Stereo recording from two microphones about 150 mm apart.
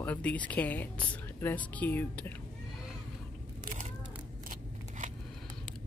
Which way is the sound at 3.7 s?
65° right (ahead or behind).